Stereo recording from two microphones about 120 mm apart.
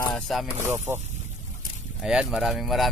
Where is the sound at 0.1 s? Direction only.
Centre (ahead or behind).